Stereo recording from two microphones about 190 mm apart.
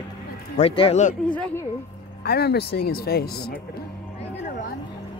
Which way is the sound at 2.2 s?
55° left (ahead or behind).